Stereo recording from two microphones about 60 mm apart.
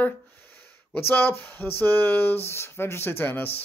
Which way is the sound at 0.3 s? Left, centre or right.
Left.